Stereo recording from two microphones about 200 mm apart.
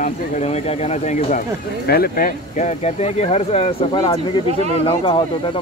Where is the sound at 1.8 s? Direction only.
50° left (ahead or behind); by 5.2 s 25° left (ahead or behind).